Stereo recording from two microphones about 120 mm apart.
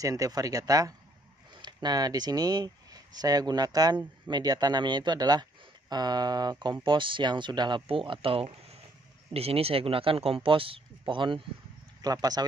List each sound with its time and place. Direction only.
0.0 s speech: 30° right (ahead or behind)
12.0 s speech: 30° right (ahead or behind)